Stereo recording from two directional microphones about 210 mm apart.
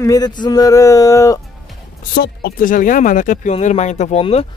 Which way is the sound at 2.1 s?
50° left (ahead or behind).